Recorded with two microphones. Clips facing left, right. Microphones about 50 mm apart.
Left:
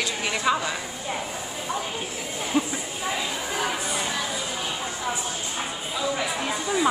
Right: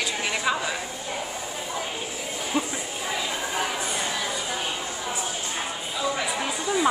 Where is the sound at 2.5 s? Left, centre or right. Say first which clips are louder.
Left 2 dB; centre.